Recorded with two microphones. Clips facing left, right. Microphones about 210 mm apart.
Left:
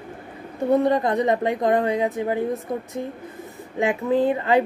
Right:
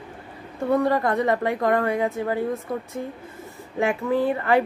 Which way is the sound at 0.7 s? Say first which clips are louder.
Left 2 dB; 20° left (ahead or behind).